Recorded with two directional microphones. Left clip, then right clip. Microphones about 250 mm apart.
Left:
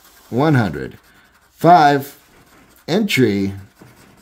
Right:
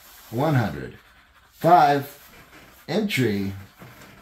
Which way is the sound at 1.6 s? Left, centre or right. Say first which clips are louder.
Left 6 dB; left.